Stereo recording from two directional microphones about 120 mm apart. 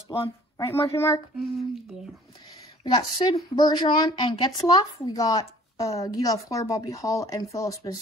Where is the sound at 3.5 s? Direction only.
35° left (ahead or behind).